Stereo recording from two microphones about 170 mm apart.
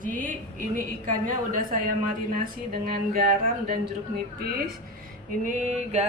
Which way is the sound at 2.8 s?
60° right (ahead or behind).